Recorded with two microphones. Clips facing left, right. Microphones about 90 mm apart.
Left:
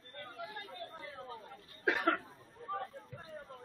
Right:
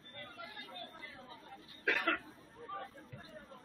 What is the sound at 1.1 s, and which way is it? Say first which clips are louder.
Chatter: left 6 dB; 40° left (ahead or behind).